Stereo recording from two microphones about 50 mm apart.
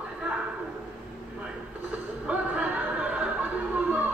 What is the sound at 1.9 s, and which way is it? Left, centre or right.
Music, right.